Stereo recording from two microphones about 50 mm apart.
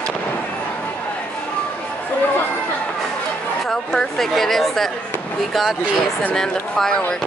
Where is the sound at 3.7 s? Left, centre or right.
Centre.